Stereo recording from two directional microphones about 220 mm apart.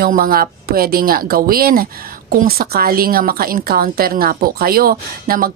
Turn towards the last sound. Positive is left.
turn(degrees=-40)  # may be behind; listen again after turning